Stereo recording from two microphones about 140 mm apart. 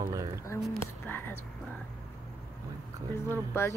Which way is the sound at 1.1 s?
15° left (ahead or behind).